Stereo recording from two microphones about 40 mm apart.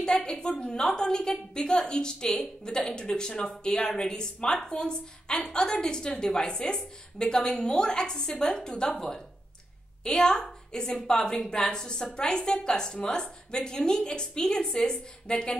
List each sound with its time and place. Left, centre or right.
0.0 s a woman's voice: centre